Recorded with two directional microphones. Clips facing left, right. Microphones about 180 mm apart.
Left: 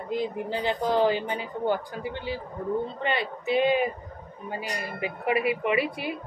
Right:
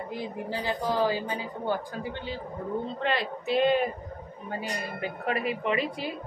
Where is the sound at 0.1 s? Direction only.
20° left (ahead or behind).